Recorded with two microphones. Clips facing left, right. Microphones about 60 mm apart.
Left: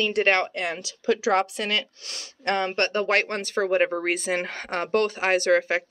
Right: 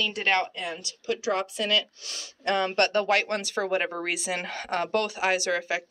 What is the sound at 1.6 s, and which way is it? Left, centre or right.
Speech, left.